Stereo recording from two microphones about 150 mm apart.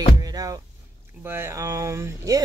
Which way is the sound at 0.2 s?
25° right (ahead or behind).